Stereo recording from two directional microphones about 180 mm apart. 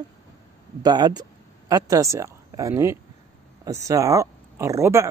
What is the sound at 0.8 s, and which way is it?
Speech, 25° right (ahead or behind).